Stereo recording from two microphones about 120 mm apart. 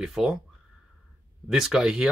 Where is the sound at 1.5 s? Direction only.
5° right (ahead or behind).